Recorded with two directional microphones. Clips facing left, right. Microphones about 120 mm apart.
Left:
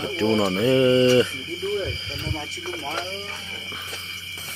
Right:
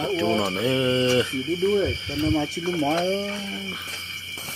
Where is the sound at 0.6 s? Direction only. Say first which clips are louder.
Left 5 dB; 10° right (ahead or behind).